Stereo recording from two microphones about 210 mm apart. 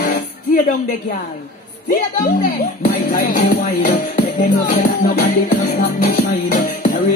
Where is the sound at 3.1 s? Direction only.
45° left (ahead or behind).